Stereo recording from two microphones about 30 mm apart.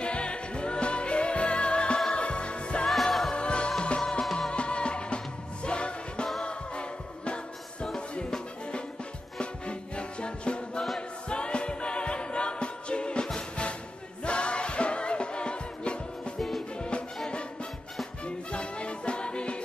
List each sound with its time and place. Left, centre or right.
0.0 s music: left
2.9 s music: centre
3.3 s music: left
4.2 s music: centre
4.5 s music: left
9.4 s music: left
18.2 s music: left